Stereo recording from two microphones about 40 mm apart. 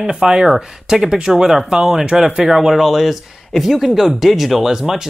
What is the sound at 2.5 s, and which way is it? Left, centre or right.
Speech, centre.